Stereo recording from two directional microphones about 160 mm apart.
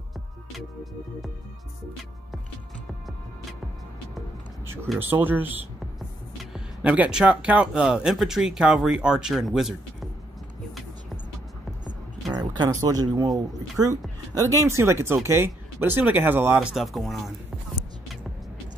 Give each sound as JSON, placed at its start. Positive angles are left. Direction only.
{"t": 4.9, "sound": "speech", "side_deg": -10}
{"t": 6.5, "sound": "speech", "side_deg": -10}
{"t": 12.4, "sound": "speech", "side_deg": -25}